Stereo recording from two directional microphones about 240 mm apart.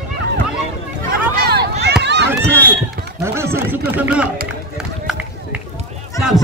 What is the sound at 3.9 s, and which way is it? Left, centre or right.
Speech, centre.